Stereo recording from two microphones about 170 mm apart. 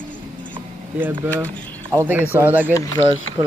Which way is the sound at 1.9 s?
10° right (ahead or behind).